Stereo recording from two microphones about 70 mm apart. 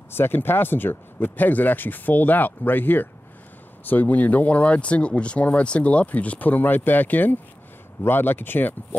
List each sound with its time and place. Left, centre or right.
0.1 s speech: left